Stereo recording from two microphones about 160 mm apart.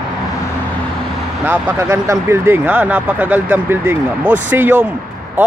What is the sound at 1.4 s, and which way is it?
Speech, 15° right (ahead or behind).